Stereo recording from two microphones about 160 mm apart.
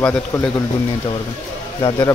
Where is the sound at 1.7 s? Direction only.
30° left (ahead or behind).